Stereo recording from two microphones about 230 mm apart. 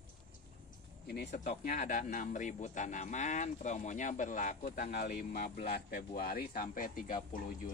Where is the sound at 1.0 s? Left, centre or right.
Left.